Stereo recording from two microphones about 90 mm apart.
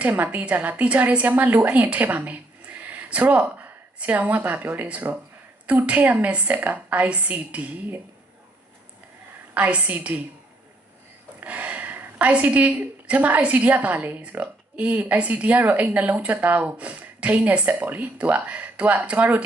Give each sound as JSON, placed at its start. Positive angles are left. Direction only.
{"t": 0.0, "sound": "a woman's voice", "side_deg": -20}
{"t": 9.5, "sound": "a woman's voice", "side_deg": -15}
{"t": 11.3, "sound": "a woman's voice", "side_deg": -15}